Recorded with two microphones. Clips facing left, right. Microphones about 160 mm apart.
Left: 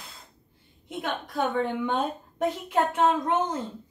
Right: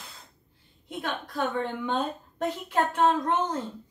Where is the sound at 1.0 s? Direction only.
15° left (ahead or behind).